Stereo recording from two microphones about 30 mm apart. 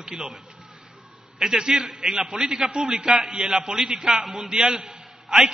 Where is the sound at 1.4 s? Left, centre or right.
Centre.